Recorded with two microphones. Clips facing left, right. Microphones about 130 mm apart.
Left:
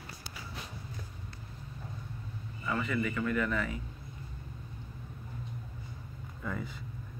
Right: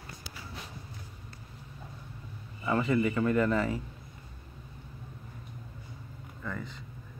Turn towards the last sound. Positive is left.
turn(degrees=5)  # may be behind; listen again after turning